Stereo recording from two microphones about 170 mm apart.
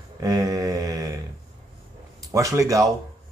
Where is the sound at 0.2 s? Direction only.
20° right (ahead or behind).